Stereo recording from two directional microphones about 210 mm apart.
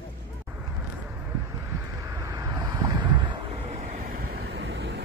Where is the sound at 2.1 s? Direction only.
15° right (ahead or behind).